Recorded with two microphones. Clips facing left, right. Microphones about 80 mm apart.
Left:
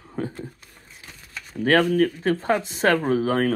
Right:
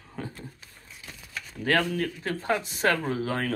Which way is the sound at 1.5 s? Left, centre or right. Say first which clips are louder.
Left 7 dB; left.